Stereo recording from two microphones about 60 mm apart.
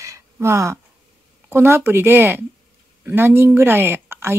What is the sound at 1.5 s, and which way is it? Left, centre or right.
Speech, right.